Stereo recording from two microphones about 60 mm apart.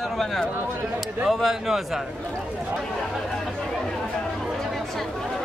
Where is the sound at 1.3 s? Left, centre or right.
Centre.